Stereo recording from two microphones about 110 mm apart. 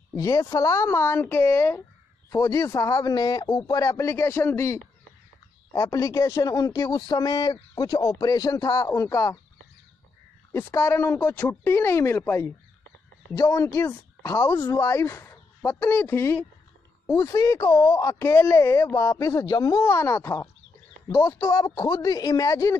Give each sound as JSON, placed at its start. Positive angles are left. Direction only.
{"t": 0.1, "sound": "speech", "side_deg": 30}
{"t": 5.7, "sound": "a man's voice", "side_deg": 35}
{"t": 10.5, "sound": "speech", "side_deg": 25}
{"t": 17.1, "sound": "a man's voice", "side_deg": 30}